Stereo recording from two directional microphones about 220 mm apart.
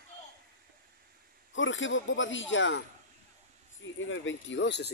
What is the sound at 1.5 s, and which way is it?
Speech, 60° left (ahead or behind).